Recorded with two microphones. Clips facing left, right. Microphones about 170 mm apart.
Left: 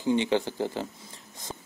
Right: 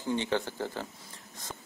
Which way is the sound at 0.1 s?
20° left (ahead or behind).